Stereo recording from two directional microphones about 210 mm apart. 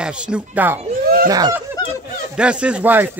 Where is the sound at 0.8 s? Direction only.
40° right (ahead or behind).